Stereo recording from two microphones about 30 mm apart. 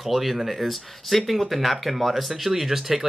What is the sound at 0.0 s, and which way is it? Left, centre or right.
Speech, centre.